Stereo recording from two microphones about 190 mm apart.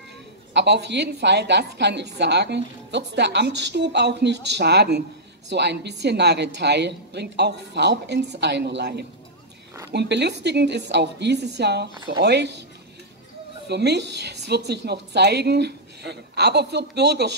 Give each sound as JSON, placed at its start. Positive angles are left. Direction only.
{"t": 0.5, "sound": "a woman's voice", "side_deg": -65}
{"t": 13.7, "sound": "a woman's voice", "side_deg": -60}